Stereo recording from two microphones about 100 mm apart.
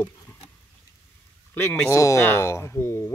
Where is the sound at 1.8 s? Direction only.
30° left (ahead or behind).